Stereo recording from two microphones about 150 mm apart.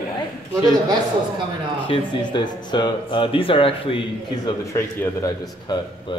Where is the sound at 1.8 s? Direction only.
30° left (ahead or behind).